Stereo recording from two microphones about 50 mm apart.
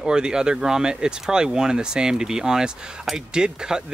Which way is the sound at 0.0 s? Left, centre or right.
Centre.